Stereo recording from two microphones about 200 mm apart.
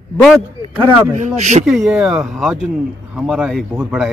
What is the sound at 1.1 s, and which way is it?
Speech, 35° right (ahead or behind).